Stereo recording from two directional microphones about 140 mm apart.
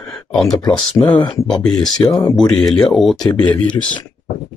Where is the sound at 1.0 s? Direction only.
35° left (ahead or behind).